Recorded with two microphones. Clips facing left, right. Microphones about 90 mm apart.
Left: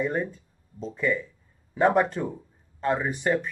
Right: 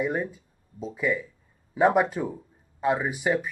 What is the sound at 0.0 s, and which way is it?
Speech, 10° right (ahead or behind).